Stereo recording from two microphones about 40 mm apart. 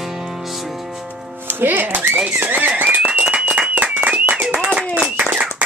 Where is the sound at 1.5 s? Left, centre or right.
Right.